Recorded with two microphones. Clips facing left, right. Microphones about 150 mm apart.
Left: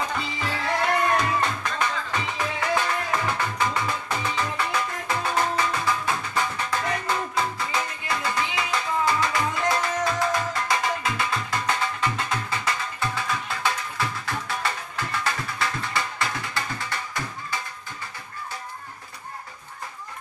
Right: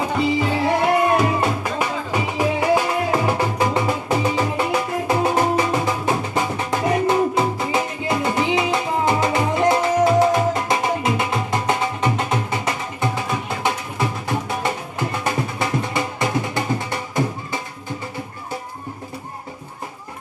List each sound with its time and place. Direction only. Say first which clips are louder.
0.2 s music: right 11 dB; 20° right (ahead or behind)
3.1 s music: right 7 dB; 30° right (ahead or behind)